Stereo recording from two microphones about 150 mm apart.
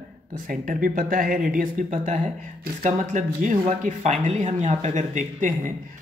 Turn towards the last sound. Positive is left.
turn(degrees=-55)  # may be behind; listen again after turning